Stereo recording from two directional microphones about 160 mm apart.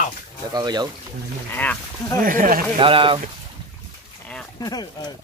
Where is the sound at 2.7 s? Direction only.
35° right (ahead or behind).